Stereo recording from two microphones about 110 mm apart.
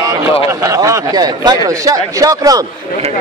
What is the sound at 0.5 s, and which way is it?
A man's voice, 25° right (ahead or behind).